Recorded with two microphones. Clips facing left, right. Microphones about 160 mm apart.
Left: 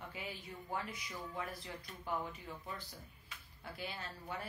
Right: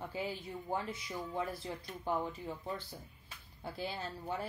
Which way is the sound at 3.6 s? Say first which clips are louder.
Right 5 dB; 30° right (ahead or behind).